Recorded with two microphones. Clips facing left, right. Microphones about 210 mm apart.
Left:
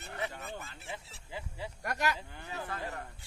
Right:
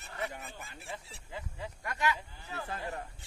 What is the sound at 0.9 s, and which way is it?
Speech, 10° left (ahead or behind).